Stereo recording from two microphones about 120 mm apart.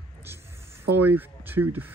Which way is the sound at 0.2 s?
20° right (ahead or behind).